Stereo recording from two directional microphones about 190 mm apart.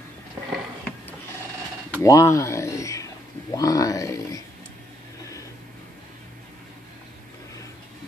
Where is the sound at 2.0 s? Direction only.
15° left (ahead or behind).